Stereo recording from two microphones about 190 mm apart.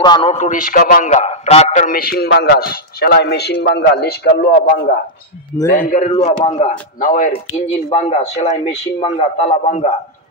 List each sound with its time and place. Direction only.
0.0 s speech: 25° left (ahead or behind); by 4.9 s 50° left (ahead or behind)
5.8 s a man's voice: 40° left (ahead or behind)